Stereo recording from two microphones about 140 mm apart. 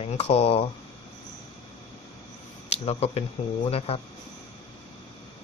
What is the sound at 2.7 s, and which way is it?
Speech, 45° left (ahead or behind).